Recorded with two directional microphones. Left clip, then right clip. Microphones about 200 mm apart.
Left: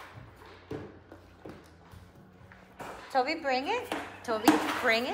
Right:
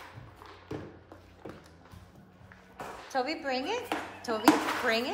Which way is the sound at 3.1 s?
15° right (ahead or behind).